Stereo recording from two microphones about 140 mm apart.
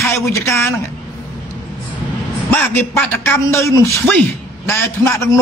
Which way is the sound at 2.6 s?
15° left (ahead or behind).